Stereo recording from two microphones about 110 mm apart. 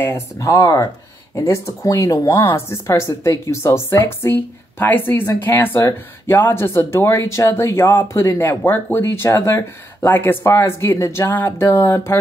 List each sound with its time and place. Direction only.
0.0 s speech: 25° left (ahead or behind)